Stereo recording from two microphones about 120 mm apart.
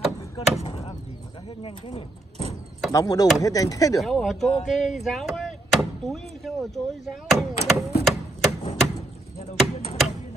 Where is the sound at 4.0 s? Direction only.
Centre (ahead or behind).